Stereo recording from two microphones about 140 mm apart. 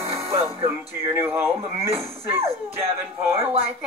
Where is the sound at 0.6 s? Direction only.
20° right (ahead or behind).